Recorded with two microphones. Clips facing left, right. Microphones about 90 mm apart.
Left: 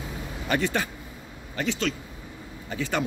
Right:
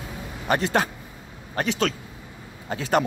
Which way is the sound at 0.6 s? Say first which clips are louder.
Right 4 dB; 75° right (ahead or behind).